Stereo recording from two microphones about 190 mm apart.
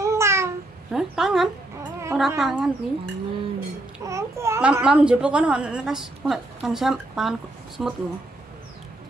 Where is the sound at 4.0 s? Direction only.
15° right (ahead or behind).